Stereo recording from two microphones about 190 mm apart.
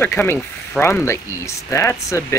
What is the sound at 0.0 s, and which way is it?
Speech, 10° left (ahead or behind).